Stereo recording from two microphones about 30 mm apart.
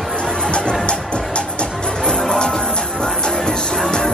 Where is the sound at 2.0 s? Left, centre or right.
Left.